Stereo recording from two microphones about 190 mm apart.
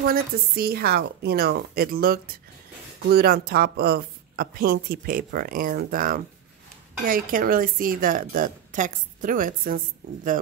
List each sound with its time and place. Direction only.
0.0 s a woman's voice: 55° right (ahead or behind)